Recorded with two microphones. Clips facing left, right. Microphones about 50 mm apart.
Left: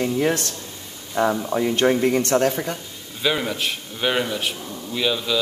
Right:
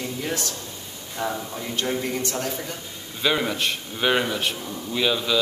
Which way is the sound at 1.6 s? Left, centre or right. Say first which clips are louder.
Left 9 dB; left.